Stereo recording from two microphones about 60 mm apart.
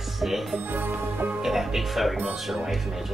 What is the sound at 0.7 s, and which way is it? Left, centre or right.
Music, right.